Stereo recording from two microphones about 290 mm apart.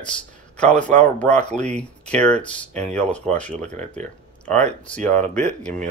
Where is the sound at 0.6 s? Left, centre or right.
Centre.